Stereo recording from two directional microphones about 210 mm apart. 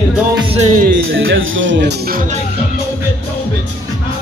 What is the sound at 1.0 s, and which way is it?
Speech, 70° right (ahead or behind).